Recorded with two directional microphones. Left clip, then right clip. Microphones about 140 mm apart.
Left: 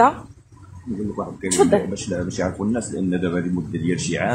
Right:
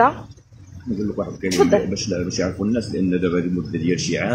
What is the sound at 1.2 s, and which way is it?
Speech, 5° left (ahead or behind).